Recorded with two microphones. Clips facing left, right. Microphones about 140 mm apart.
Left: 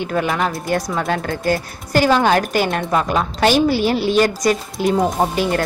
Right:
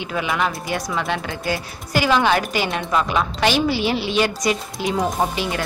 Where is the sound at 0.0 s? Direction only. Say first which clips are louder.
Left 3 dB; 45° left (ahead or behind).